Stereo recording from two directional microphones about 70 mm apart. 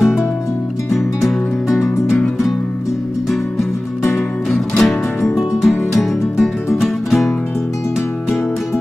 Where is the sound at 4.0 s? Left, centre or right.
Left.